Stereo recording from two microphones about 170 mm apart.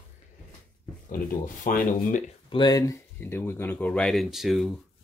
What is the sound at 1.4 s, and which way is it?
Speech, 50° left (ahead or behind).